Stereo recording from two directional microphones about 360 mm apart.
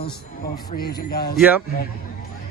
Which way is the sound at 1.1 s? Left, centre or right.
Left.